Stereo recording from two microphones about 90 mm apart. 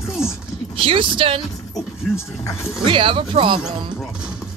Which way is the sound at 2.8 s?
70° right (ahead or behind).